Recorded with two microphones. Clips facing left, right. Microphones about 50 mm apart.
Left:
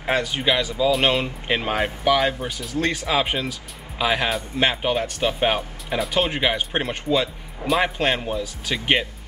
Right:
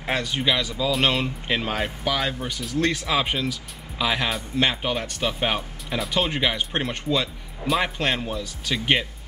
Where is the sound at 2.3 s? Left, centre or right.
Centre.